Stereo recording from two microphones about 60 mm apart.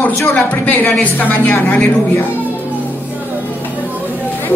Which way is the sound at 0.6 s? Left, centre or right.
Left.